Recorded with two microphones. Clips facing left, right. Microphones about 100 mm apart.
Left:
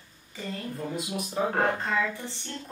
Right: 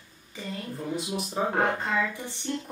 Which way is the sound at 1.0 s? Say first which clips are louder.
Left 1 dB; 30° right (ahead or behind).